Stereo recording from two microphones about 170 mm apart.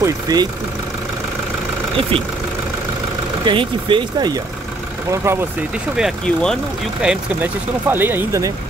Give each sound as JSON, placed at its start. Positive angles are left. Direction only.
{"t": 0.0, "sound": "speech", "side_deg": -20}
{"t": 3.4, "sound": "speech", "side_deg": -30}
{"t": 5.1, "sound": "speech", "side_deg": -15}
{"t": 5.9, "sound": "speech", "side_deg": 0}